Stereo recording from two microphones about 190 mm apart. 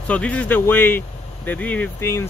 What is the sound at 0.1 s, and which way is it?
Speech, 5° left (ahead or behind).